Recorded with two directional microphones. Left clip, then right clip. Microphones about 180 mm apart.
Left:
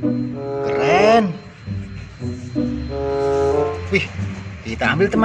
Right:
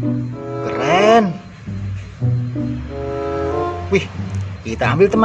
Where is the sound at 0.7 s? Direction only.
10° right (ahead or behind).